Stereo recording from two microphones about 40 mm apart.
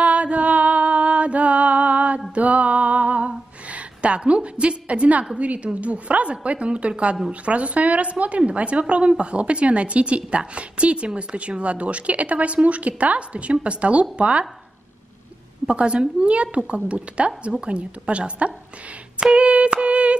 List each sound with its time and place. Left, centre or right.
0.0 s music: right
5.4 s a woman's voice: right
15.6 s a woman's voice: right